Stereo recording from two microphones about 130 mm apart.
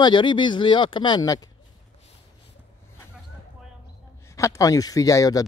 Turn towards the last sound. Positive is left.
turn(degrees=25)  # may be behind; listen again after turning